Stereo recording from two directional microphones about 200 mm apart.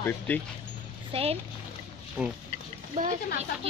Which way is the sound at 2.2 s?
5° right (ahead or behind).